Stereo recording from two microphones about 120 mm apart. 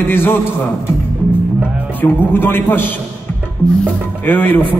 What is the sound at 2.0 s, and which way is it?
A man's voice, 15° left (ahead or behind).